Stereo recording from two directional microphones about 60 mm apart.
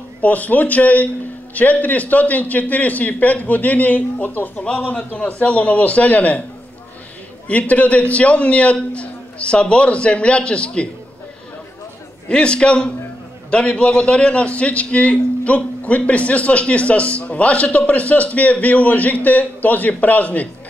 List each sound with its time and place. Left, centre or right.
0.2 s a man's voice: left
7.4 s a man's voice: left
12.3 s a man's voice: centre